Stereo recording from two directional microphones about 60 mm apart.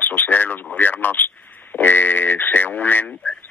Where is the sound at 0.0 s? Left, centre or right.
Left.